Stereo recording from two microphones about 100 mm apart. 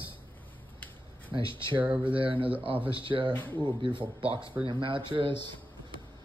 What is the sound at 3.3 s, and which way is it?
Speech, 20° left (ahead or behind).